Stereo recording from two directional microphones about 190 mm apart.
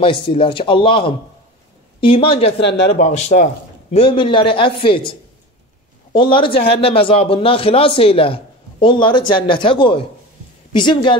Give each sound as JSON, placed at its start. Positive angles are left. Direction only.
{"t": 0.0, "sound": "a man's voice", "side_deg": 30}
{"t": 2.6, "sound": "speech", "side_deg": 65}
{"t": 3.0, "sound": "a man's voice", "side_deg": 35}
{"t": 6.1, "sound": "a man's voice", "side_deg": 25}